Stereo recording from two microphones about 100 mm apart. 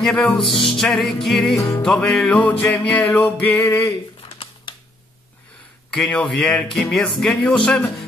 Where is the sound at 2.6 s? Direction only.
15° left (ahead or behind).